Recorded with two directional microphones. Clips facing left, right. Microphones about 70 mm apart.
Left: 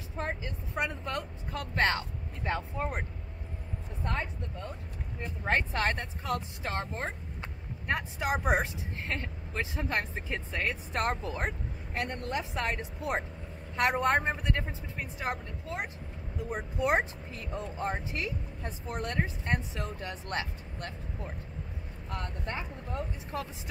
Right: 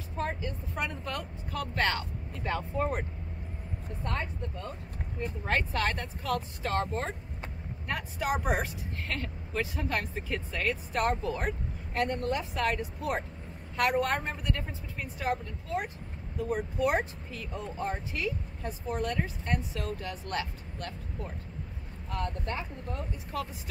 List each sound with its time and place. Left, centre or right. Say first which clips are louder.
0.2 s speech: right 2 dB; centre
2.4 s speech: right 2 dB; centre
4.0 s speech: even; centre
5.4 s speech: left 1 dB; left
22.4 s speech: right 1 dB; left